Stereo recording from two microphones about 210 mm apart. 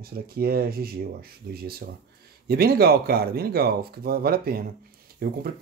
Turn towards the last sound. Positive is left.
turn(degrees=-45)  # may be behind; listen again after turning